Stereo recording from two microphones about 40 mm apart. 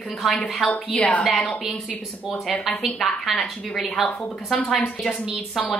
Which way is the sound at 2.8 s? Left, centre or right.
Centre.